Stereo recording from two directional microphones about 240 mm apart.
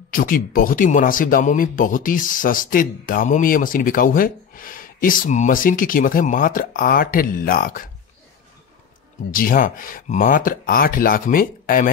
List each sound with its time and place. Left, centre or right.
0.1 s speech: left
9.3 s speech: left